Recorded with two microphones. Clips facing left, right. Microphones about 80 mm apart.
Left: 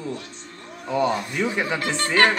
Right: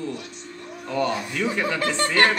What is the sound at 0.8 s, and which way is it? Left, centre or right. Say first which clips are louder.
Speech: left 2 dB; centre.